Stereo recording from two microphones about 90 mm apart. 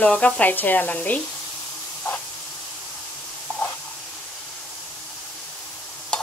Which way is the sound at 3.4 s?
15° left (ahead or behind).